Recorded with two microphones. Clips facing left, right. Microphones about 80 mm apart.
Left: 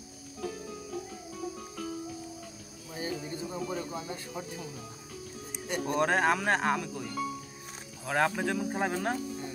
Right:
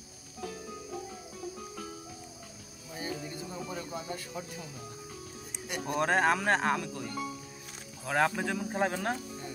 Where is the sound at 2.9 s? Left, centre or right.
Left.